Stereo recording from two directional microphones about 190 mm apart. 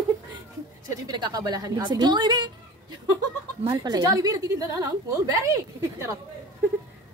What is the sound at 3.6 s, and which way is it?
A woman's voice, 20° right (ahead or behind).